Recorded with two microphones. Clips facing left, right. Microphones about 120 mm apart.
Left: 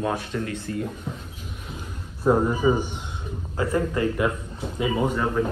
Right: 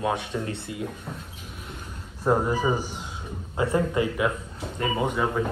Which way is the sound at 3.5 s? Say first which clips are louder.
Right 1 dB; 25° right (ahead or behind).